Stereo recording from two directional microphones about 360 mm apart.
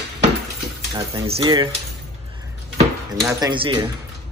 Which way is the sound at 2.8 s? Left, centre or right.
Centre.